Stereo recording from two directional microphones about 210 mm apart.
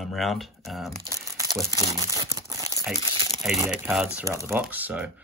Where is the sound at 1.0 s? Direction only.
15° right (ahead or behind).